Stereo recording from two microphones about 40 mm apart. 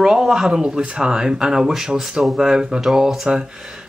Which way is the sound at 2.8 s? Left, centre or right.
Centre.